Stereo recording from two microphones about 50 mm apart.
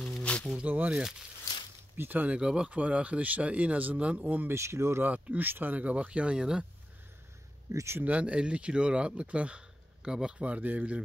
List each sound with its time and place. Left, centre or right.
0.3 s a sound: left
0.7 s speech: right
2.0 s speech: right
2.3 s speech: centre
4.5 s speech: right
5.0 s speech: right
5.5 s speech: right
5.8 s speech: right
7.7 s speech: right
8.0 s speech: right